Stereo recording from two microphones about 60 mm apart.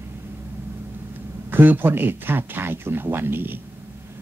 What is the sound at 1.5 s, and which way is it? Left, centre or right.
Speech, right.